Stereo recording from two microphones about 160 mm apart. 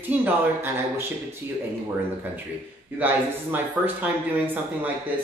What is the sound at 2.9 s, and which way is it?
Speech, 10° right (ahead or behind).